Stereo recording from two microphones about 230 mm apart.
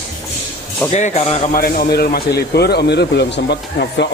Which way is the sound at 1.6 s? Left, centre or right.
Left.